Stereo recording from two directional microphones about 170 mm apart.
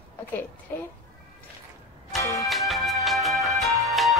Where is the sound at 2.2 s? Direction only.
20° left (ahead or behind).